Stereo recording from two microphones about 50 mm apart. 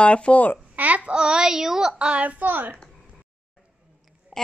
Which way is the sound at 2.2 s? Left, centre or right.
Right.